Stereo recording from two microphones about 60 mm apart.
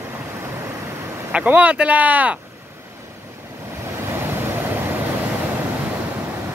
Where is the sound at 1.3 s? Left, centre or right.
Right.